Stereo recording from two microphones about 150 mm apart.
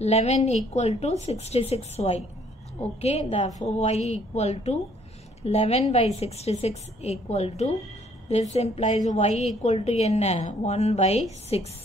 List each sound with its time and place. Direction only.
0.0 s a woman's voice: 45° left (ahead or behind)